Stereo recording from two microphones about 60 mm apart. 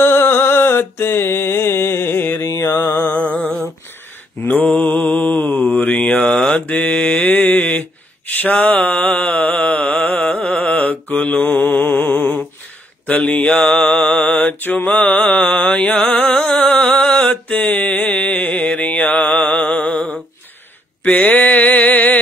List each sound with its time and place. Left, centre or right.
0.0 s mantra: left
2.5 s music: left
4.4 s mantra: left
6.1 s mantra: centre; by 12.4 s left
13.0 s mantra: centre
15.0 s music: centre
16.1 s mantra: centre
19.9 s a sound: centre
21.0 s mantra: left